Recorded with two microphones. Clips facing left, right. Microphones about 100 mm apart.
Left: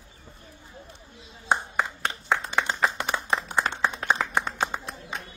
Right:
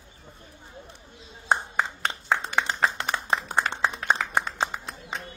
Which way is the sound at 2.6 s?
20° left (ahead or behind).